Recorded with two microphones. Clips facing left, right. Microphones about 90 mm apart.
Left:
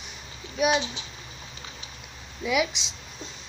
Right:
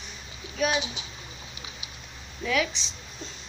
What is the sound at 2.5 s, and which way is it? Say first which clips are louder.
Speech: left 2 dB; 15° left (ahead or behind).